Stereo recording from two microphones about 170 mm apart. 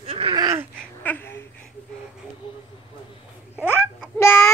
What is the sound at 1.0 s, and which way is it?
Babbling, 10° left (ahead or behind).